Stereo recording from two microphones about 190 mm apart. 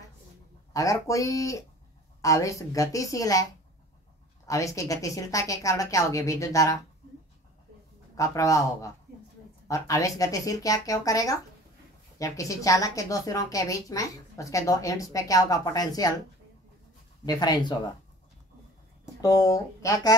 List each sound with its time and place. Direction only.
0.7 s a woman's voice: 15° left (ahead or behind)
4.5 s a woman's voice: 15° left (ahead or behind)
8.2 s a woman's voice: 15° left (ahead or behind)
17.3 s speech: 20° left (ahead or behind)
19.2 s a woman's voice: 20° left (ahead or behind)